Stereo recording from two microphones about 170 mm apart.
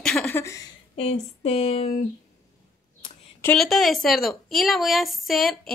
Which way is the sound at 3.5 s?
Centre (ahead or behind).